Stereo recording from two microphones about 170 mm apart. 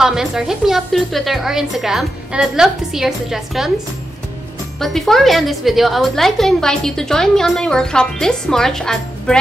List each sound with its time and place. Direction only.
0.0 s a woman's voice: 5° right (ahead or behind)
4.7 s a woman's voice: centre (ahead or behind)